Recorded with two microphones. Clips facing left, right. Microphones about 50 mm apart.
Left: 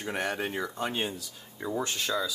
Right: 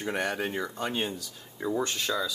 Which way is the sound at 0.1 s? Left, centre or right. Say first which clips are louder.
Right 1 dB; centre.